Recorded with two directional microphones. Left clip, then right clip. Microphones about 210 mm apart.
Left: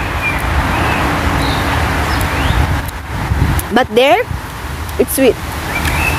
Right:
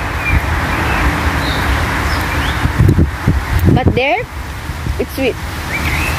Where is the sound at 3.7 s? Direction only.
30° left (ahead or behind).